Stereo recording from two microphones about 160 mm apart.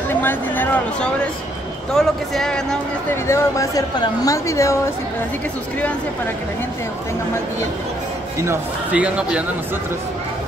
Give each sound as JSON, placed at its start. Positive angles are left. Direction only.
{"t": 0.1, "sound": "a sound", "side_deg": 15}
{"t": 2.0, "sound": "speech", "side_deg": 5}
{"t": 3.3, "sound": "speech", "side_deg": 20}
{"t": 8.4, "sound": "speech", "side_deg": -10}